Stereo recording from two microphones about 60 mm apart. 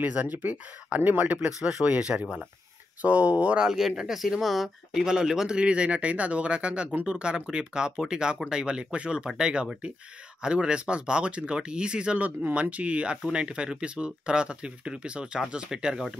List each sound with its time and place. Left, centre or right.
0.0 s speech: right
3.6 s speech: centre